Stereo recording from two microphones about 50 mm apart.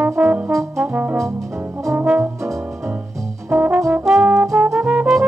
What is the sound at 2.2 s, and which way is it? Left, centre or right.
Brass instrument, right.